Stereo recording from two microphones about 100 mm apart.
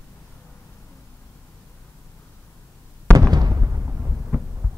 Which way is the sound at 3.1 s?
40° right (ahead or behind).